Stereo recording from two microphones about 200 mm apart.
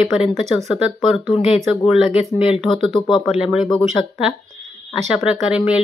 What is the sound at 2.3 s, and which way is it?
Speech, 30° left (ahead or behind).